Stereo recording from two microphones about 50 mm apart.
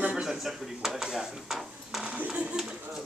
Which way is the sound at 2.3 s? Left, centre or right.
Right.